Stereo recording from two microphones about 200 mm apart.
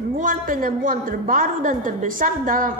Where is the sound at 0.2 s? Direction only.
40° right (ahead or behind).